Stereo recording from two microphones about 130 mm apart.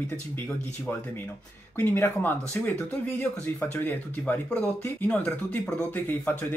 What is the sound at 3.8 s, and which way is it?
Speech, 10° left (ahead or behind).